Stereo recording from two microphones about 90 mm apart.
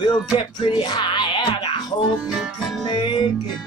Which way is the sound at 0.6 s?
55° left (ahead or behind).